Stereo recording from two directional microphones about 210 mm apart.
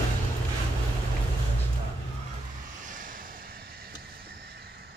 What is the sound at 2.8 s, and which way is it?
Vehicle, 40° right (ahead or behind).